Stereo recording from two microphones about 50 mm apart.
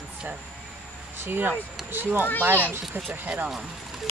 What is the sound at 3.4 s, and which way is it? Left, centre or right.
Speech, centre.